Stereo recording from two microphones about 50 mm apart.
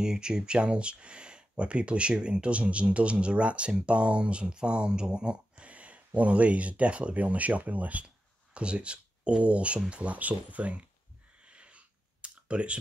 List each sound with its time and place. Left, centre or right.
0.0 s speech: centre
11.4 s clicking: right